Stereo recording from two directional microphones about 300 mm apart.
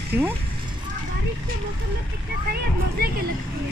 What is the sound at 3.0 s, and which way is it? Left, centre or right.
Speech, right.